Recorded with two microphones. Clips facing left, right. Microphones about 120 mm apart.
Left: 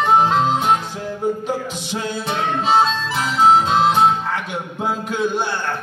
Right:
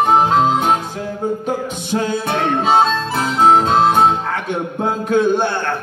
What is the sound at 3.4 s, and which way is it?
Harmonica, 50° right (ahead or behind).